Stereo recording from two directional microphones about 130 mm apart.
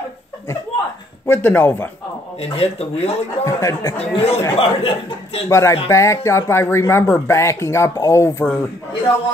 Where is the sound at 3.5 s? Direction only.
25° left (ahead or behind).